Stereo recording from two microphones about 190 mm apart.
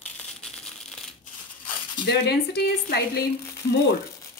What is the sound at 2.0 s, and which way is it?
Speech, 60° left (ahead or behind).